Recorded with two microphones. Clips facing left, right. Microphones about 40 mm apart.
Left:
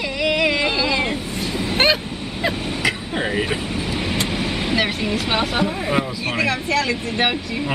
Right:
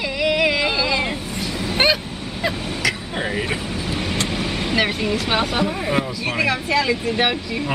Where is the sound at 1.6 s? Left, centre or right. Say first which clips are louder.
Left 1 dB; centre.